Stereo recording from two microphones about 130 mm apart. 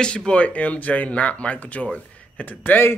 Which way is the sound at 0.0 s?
5° left (ahead or behind).